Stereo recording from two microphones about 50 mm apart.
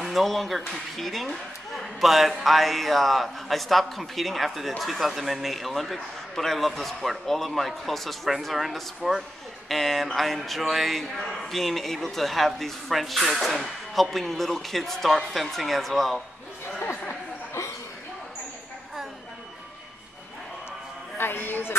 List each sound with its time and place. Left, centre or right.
0.0 s speech: centre
21.2 s speech: left